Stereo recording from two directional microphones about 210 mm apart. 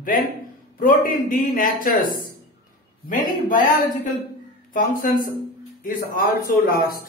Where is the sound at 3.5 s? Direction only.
40° left (ahead or behind).